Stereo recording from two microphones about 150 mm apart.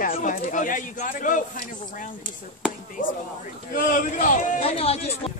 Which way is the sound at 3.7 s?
65° left (ahead or behind).